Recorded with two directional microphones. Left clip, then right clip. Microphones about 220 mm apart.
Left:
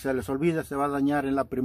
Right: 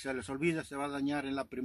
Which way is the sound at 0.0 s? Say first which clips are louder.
Left 8 dB; 10° left (ahead or behind).